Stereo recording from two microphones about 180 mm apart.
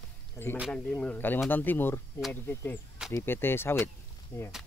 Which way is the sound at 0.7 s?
5° left (ahead or behind).